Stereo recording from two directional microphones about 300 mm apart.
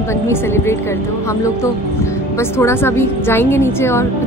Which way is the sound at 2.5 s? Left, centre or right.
Centre.